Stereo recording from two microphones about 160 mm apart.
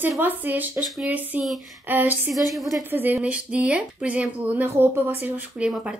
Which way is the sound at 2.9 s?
10° right (ahead or behind).